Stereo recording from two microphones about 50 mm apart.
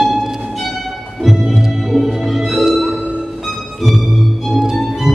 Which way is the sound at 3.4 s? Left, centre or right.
Centre.